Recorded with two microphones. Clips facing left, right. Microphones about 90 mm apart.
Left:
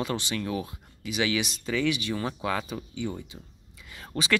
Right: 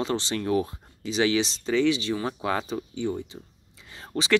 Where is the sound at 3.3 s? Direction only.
10° right (ahead or behind).